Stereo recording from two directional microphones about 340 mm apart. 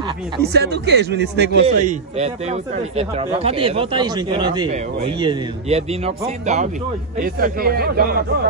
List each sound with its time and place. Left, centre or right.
0.4 s a man's voice: right